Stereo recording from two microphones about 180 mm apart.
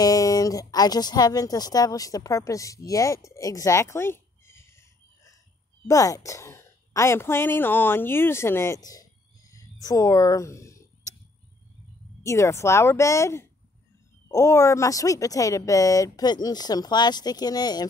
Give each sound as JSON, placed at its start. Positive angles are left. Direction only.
{"t": 0.0, "sound": "speech", "side_deg": 20}
{"t": 3.3, "sound": "a sound", "side_deg": 20}
{"t": 5.9, "sound": "a woman's voice", "side_deg": 20}
{"t": 12.2, "sound": "a woman's voice", "side_deg": 15}